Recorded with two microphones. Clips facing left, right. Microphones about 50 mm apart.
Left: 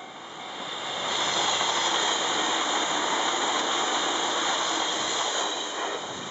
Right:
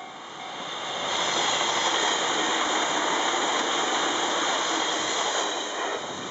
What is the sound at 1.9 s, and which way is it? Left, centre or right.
Vehicle, right.